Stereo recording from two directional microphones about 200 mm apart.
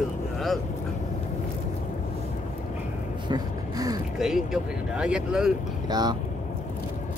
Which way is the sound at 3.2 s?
20° right (ahead or behind).